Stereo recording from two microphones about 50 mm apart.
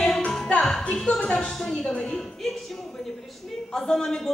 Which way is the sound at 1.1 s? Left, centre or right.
Left.